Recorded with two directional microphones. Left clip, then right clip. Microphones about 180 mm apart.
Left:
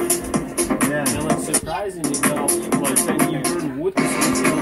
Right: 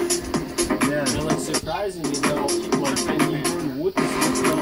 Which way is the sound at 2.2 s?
60° left (ahead or behind).